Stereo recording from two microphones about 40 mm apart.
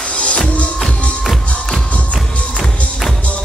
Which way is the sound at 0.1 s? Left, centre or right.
Left.